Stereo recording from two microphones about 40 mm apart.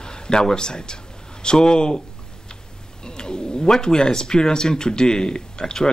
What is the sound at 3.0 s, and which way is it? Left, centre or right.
Speech, centre.